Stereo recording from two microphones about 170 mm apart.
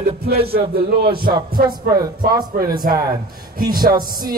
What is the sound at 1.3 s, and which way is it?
Music, 25° right (ahead or behind).